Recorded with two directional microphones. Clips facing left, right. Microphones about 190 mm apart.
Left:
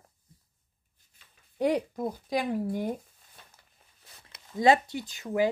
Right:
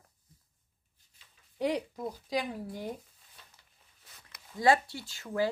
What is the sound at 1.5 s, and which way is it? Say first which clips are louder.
Speech: left 5 dB; 50° left (ahead or behind).